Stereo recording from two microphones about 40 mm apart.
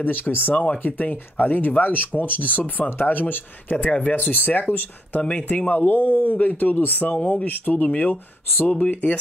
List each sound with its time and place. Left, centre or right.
0.0 s speech: left
5.2 s speech: left
5.7 s speech: left